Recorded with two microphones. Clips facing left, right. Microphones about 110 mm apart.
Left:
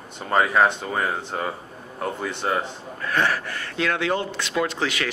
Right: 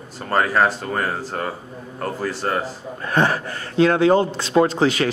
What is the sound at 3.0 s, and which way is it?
Speech, 30° right (ahead or behind).